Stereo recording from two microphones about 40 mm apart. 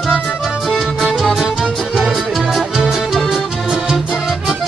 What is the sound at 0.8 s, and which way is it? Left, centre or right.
Music, centre.